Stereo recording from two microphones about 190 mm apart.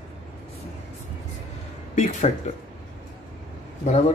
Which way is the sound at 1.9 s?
35° left (ahead or behind).